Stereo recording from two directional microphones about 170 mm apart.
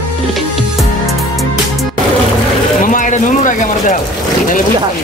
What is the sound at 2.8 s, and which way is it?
Speech, 50° left (ahead or behind).